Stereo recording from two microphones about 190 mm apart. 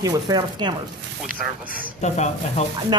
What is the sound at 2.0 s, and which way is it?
Speech, 35° left (ahead or behind).